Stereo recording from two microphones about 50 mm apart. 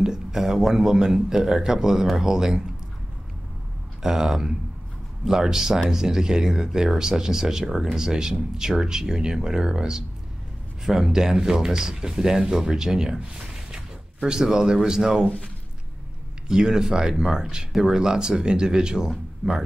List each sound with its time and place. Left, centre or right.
0.0 s speech: centre
4.0 s speech: centre
14.2 s speech: centre
15.2 s speech: left
16.4 s speech: centre